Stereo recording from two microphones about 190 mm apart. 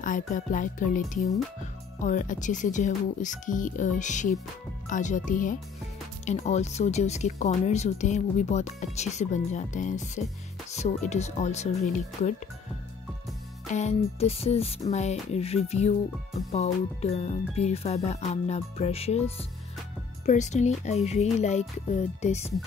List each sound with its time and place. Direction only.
0.0 s music: 45° left (ahead or behind)
13.7 s music: 35° left (ahead or behind)